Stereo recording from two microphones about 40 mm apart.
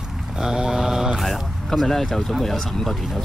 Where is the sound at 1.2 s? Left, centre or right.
Centre.